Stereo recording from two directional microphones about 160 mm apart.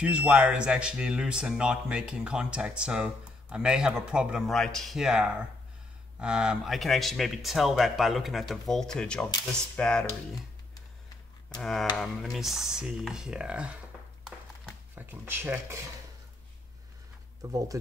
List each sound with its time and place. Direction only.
0.0 s speech: 5° right (ahead or behind)
11.6 s speech: centre (ahead or behind)
15.0 s speech: 10° right (ahead or behind)
17.4 s speech: 20° right (ahead or behind)